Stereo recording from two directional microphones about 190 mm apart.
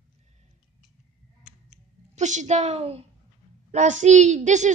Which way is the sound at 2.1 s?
40° right (ahead or behind).